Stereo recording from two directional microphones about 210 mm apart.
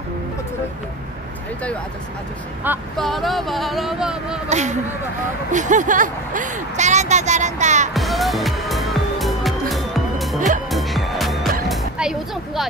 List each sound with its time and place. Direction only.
3.0 s speech: centre (ahead or behind)
4.5 s a woman's voice: 35° right (ahead or behind)
7.9 s music: centre (ahead or behind)
11.7 s a sound: centre (ahead or behind)